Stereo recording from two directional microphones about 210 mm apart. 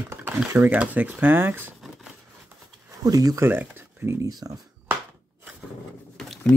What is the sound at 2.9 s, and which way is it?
Speech, 15° right (ahead or behind).